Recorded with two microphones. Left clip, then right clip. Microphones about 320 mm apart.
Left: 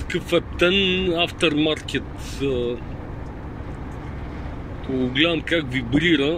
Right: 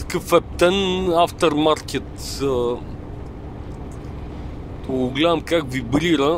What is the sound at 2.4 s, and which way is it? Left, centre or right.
Speech, right.